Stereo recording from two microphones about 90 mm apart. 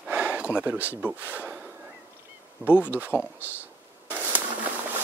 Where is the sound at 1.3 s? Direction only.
15° right (ahead or behind).